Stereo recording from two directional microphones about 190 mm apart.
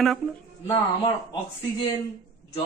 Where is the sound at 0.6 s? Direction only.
20° left (ahead or behind).